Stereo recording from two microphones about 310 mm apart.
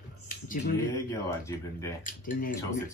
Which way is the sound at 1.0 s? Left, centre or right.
Centre.